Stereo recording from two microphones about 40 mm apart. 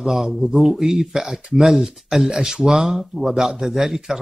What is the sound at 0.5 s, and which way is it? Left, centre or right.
Speech, centre.